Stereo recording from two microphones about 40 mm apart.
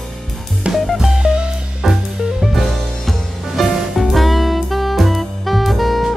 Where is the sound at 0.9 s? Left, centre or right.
Centre.